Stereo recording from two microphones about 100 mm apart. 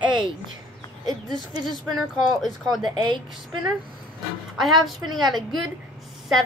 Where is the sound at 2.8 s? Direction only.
45° right (ahead or behind).